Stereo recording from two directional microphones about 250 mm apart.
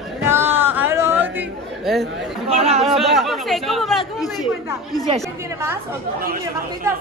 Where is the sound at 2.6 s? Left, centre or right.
Right.